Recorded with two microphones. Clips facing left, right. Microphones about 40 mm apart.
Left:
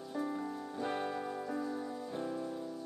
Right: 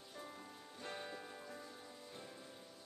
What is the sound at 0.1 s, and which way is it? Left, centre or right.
Music, left.